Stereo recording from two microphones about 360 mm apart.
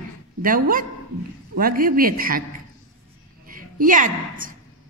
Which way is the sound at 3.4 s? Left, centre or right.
Right.